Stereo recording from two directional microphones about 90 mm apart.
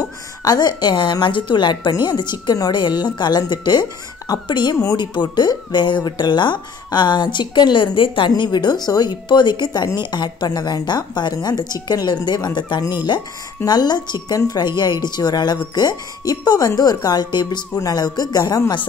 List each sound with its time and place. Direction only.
0.4 s a woman's voice: 45° left (ahead or behind); by 8.3 s 70° left (ahead or behind)
8.3 s a woman's voice: 55° left (ahead or behind)